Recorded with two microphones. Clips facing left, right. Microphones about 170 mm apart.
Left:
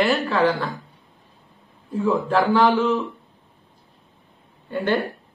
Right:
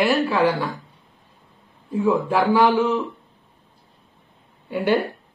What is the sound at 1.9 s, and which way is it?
Speech, 15° right (ahead or behind).